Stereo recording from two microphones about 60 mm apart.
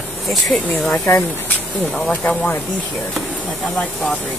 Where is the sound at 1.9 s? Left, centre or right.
Left.